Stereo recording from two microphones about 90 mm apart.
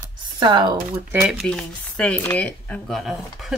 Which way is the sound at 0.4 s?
55° right (ahead or behind).